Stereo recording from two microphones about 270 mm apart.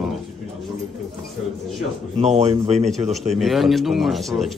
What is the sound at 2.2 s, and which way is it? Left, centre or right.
Speech, right.